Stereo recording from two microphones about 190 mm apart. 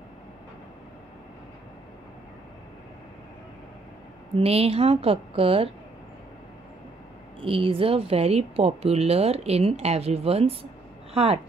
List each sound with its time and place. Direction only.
4.4 s speech: 30° right (ahead or behind)
7.4 s speech: 30° right (ahead or behind)